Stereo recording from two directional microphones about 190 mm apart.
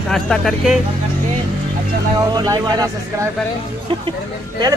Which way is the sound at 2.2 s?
20° right (ahead or behind).